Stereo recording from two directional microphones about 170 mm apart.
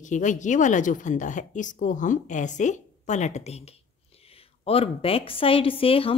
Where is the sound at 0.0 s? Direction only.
45° left (ahead or behind).